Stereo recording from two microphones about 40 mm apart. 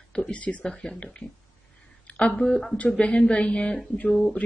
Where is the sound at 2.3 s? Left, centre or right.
Centre.